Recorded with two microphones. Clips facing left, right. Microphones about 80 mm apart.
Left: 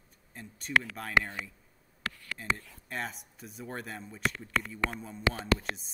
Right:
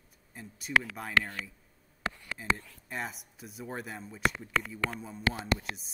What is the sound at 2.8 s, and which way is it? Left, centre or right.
Speech, centre.